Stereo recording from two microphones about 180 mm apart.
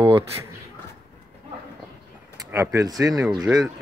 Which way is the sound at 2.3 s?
15° right (ahead or behind).